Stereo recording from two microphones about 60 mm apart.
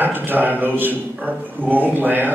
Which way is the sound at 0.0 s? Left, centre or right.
Right.